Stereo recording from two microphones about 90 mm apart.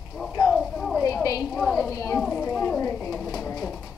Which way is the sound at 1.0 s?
40° left (ahead or behind).